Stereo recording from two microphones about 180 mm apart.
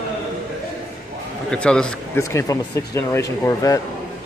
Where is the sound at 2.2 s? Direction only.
15° left (ahead or behind).